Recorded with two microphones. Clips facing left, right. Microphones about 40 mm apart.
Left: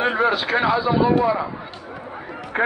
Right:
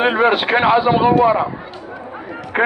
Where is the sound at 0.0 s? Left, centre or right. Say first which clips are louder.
Right 5 dB; right.